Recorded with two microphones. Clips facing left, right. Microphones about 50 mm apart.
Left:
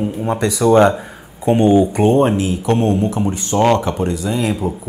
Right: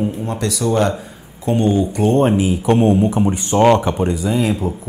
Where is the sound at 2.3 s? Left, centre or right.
Centre.